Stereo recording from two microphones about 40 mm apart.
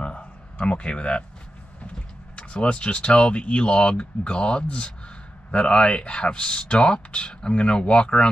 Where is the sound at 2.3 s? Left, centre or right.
Left.